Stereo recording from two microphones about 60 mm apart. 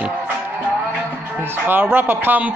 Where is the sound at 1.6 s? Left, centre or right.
Right.